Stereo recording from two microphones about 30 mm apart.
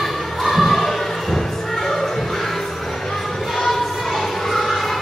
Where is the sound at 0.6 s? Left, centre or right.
Centre.